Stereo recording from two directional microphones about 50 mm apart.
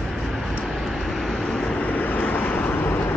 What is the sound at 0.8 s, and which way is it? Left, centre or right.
Vehicle, centre.